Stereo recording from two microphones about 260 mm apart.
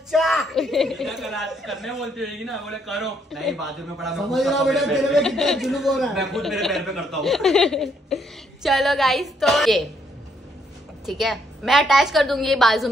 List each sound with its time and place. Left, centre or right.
0.1 s a woman's voice: centre
11.1 s a woman's voice: centre